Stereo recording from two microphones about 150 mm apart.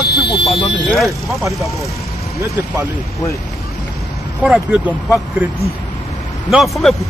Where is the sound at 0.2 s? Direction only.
Centre (ahead or behind).